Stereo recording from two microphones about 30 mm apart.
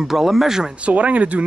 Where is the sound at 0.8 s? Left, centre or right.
Right.